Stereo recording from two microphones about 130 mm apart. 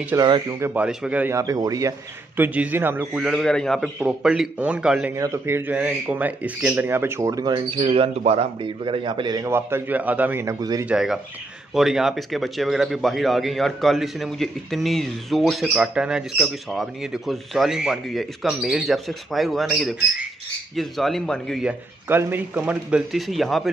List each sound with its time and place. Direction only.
0.1 s a man's voice: 30° right (ahead or behind)
0.6 s speech: 20° right (ahead or behind)
0.8 s a man's voice: 10° right (ahead or behind)
1.3 s a man's voice: 25° right (ahead or behind); by 5.1 s 5° right (ahead or behind)
5.1 s speech: 25° right (ahead or behind)
7.9 s speech: 50° right (ahead or behind)
8.6 s a man's voice: 40° right (ahead or behind)
9.5 s speech: 20° right (ahead or behind)
10.9 s a man's voice: 5° right (ahead or behind)
21.6 s a man's voice: 15° right (ahead or behind); by 23.7 s centre (ahead or behind)